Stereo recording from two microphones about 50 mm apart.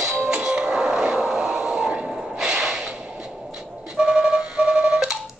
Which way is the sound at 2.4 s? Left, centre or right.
Centre.